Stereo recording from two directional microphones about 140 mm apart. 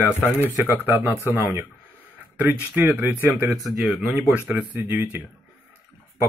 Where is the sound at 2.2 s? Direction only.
15° right (ahead or behind).